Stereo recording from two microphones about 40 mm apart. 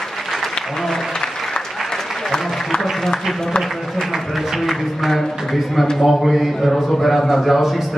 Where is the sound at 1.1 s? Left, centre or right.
Centre.